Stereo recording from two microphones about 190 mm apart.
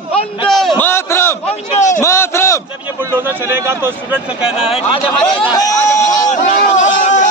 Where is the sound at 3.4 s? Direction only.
15° right (ahead or behind).